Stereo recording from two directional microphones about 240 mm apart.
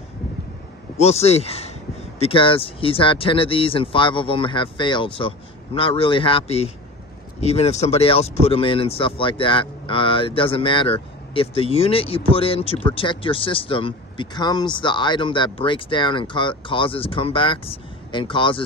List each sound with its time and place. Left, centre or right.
0.9 s speech: left